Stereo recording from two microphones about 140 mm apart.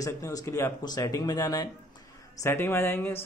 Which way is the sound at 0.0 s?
25° left (ahead or behind).